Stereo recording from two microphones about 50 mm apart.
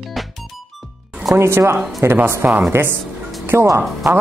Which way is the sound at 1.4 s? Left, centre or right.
Right.